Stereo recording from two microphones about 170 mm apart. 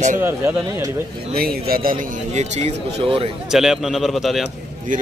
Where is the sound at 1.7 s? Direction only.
55° right (ahead or behind); by 3.3 s 35° right (ahead or behind).